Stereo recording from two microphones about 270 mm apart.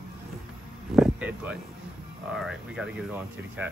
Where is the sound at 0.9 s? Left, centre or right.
Centre.